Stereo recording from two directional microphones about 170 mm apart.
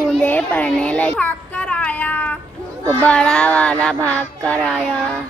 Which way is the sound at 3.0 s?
5° left (ahead or behind).